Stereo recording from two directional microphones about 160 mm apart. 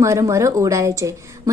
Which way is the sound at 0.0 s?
20° right (ahead or behind).